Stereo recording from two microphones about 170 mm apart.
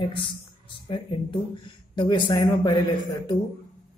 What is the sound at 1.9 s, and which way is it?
A man's voice, 25° left (ahead or behind).